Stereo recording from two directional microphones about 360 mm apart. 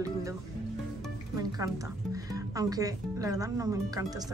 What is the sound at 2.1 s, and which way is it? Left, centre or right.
Speech, centre.